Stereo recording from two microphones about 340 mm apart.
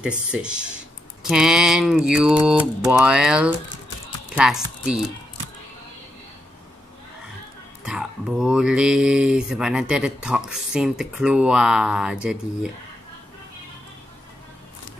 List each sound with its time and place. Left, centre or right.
0.0 s speech: centre
7.8 s speech: centre